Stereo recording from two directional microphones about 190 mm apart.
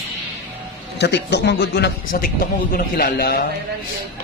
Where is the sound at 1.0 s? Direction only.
65° left (ahead or behind).